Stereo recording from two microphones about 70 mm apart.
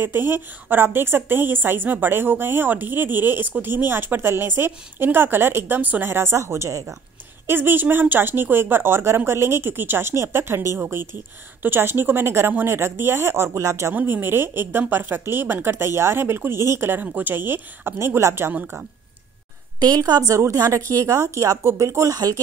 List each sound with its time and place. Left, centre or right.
0.0 s a woman's voice: right
6.0 s speech: right
7.4 s a woman's voice: right
14.0 s a woman's voice: right
17.0 s a woman's voice: right
19.8 s a woman's voice: right
20.3 s speech: right